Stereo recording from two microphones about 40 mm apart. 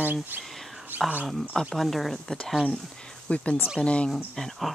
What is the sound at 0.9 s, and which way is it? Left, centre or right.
Wild animals, right.